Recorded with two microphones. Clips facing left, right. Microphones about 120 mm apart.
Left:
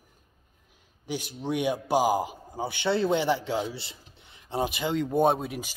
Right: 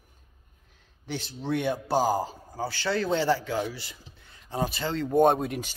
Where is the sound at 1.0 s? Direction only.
10° left (ahead or behind).